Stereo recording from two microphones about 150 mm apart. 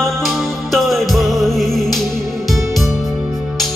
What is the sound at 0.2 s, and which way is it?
Music, centre (ahead or behind).